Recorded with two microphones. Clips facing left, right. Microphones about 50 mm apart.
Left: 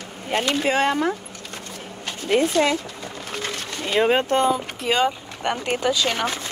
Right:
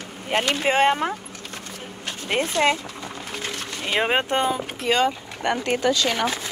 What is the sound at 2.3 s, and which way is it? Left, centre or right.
Speech, right.